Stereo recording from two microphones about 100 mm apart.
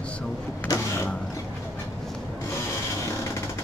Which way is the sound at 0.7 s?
40° left (ahead or behind).